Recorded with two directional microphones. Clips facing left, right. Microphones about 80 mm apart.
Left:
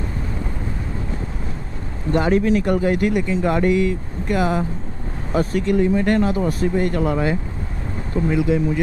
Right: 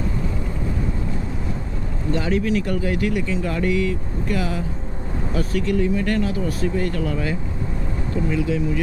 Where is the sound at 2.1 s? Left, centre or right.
Left.